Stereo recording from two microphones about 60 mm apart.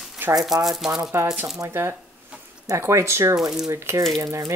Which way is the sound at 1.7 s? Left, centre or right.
Right.